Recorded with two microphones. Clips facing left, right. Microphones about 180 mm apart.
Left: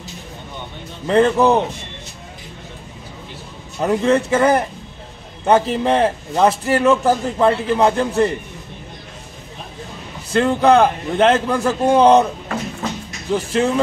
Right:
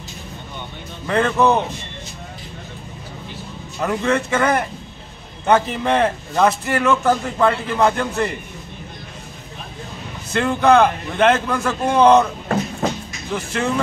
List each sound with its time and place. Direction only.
1.0 s a man's voice: 30° left (ahead or behind)
3.8 s a man's voice: 30° left (ahead or behind)
10.3 s a man's voice: 30° left (ahead or behind)
13.3 s a man's voice: 30° left (ahead or behind)